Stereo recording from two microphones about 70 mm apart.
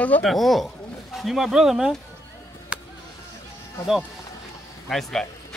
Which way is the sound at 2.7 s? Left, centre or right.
Centre.